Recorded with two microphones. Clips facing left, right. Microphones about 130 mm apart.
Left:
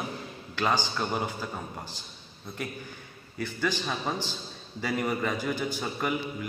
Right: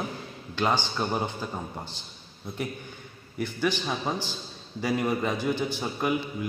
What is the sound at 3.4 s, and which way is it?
A man's voice, 15° right (ahead or behind).